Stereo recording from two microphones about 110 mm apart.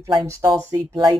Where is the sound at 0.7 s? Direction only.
40° right (ahead or behind).